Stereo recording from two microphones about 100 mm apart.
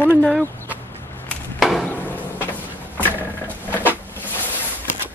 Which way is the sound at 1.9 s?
20° left (ahead or behind).